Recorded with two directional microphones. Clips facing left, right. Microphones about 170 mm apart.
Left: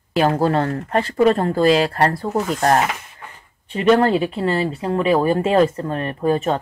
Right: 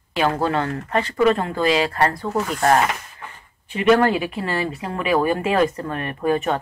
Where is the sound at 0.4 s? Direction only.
35° left (ahead or behind).